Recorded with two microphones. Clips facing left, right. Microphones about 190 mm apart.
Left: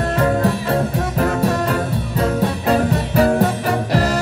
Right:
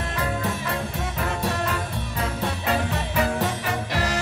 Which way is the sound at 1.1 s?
45° left (ahead or behind).